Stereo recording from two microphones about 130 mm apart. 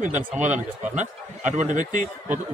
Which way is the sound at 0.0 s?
65° right (ahead or behind).